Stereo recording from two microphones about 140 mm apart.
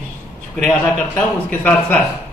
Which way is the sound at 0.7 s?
10° left (ahead or behind).